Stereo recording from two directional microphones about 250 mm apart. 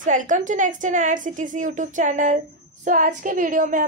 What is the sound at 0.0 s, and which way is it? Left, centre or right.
A woman's voice, right.